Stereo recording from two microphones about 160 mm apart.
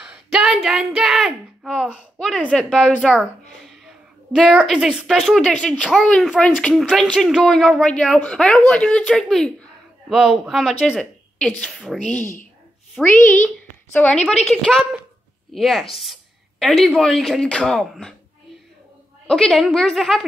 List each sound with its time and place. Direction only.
0.0 s a sound: 5° right (ahead or behind)
0.9 s a woman's voice: 5° right (ahead or behind)
12.1 s speech: 55° left (ahead or behind)
13.0 s a woman's voice: 5° left (ahead or behind)
19.2 s a woman's voice: centre (ahead or behind)